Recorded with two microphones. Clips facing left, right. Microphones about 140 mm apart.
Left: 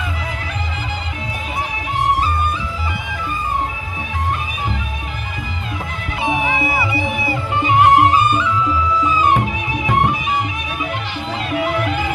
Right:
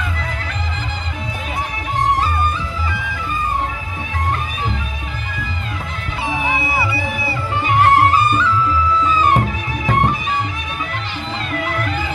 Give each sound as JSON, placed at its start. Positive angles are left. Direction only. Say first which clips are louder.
{"t": 6.2, "sound": "music", "louder": "left 2 dB", "side_deg": 20}